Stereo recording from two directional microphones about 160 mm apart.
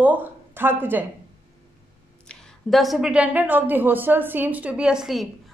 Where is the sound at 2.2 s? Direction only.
Centre (ahead or behind).